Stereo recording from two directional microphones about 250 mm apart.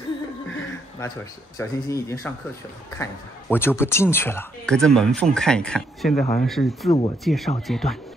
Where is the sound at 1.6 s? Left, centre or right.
Centre.